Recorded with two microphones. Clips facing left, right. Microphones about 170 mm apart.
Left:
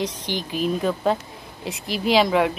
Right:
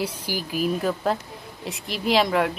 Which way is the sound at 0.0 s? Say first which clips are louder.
Left 1 dB; 10° right (ahead or behind).